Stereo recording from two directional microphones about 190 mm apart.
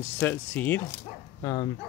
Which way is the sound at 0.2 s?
10° left (ahead or behind).